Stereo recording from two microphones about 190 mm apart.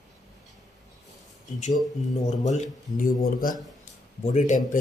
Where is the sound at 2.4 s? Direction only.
40° left (ahead or behind).